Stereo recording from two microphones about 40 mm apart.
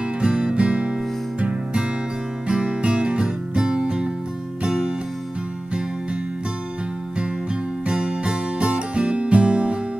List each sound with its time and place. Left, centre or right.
0.2 s music: right
2.4 s music: right
7.8 s music: right